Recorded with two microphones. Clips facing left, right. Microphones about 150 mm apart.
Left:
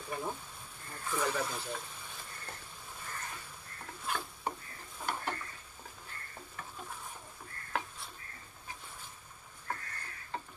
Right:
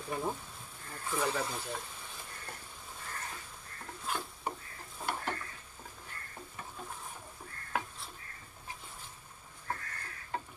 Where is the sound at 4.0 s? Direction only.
Centre (ahead or behind).